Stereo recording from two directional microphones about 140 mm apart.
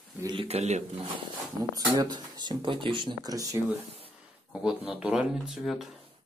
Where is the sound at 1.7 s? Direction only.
30° right (ahead or behind).